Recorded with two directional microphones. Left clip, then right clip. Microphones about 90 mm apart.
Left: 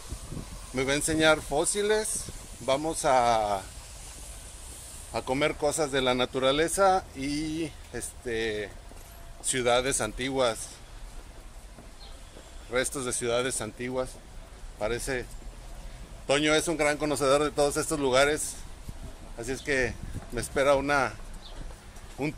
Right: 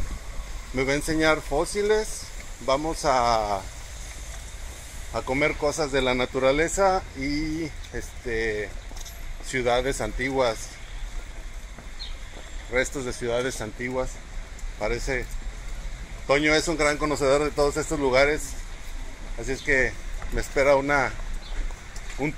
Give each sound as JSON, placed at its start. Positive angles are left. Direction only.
{"t": 0.7, "sound": "speech", "side_deg": 35}
{"t": 5.5, "sound": "speech", "side_deg": 40}
{"t": 6.4, "sound": "speech", "side_deg": 35}
{"t": 12.7, "sound": "speech", "side_deg": 35}
{"t": 16.3, "sound": "speech", "side_deg": 40}
{"t": 19.4, "sound": "speech", "side_deg": 45}
{"t": 20.3, "sound": "speech", "side_deg": 30}
{"t": 22.2, "sound": "speech", "side_deg": 70}